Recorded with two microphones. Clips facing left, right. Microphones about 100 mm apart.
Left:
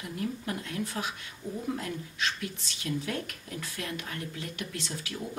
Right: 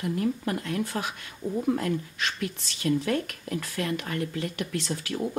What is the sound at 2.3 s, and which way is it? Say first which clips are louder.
Speech: right 5 dB; 60° right (ahead or behind).